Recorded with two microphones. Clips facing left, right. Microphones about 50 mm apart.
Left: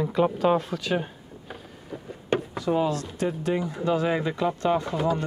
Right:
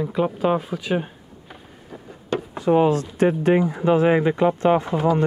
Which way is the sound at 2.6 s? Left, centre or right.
Right.